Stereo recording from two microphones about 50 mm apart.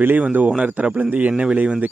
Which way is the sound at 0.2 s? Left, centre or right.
Right.